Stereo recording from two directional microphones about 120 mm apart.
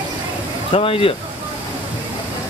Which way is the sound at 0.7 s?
50° left (ahead or behind).